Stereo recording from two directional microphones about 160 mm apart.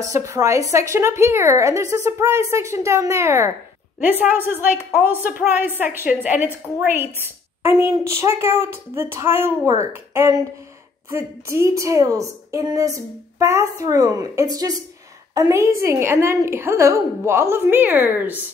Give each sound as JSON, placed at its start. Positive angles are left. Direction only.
{"t": 0.1, "sound": "a woman's voice", "side_deg": -20}